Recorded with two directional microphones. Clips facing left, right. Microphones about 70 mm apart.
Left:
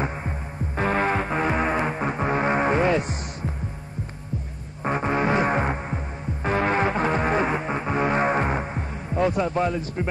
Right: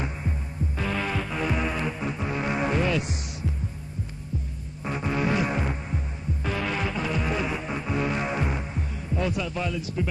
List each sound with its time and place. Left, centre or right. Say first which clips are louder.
0.0 s throbbing: left 4 dB; left
0.7 s music: left 7 dB; left
4.8 s throbbing: left 4 dB; left